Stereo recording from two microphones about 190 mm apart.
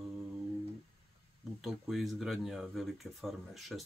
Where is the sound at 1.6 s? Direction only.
Centre (ahead or behind).